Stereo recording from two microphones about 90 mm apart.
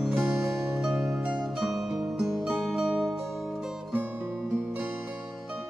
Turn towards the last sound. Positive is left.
turn(degrees=-20)  # may be behind; listen again after turning